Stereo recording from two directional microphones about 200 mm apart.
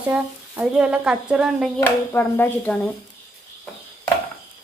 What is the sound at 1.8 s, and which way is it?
Speech, 10° left (ahead or behind).